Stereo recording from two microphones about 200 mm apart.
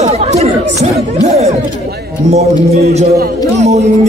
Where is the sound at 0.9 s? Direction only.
30° right (ahead or behind).